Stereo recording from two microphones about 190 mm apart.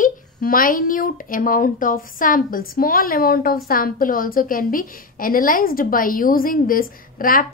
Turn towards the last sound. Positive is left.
turn(degrees=50)  # may be behind; listen again after turning